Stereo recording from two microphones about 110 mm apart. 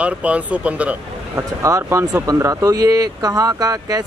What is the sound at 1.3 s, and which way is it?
Speech, 25° right (ahead or behind).